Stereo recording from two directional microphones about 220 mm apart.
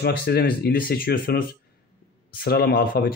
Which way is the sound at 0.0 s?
45° left (ahead or behind).